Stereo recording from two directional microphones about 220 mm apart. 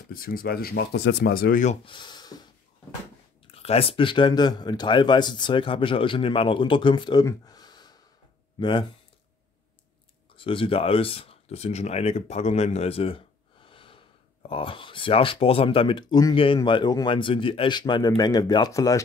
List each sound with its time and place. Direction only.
0.1 s speech: 40° left (ahead or behind)
1.9 s speech: 20° left (ahead or behind)
3.5 s speech: 25° left (ahead or behind)
10.3 s speech: 25° left (ahead or behind)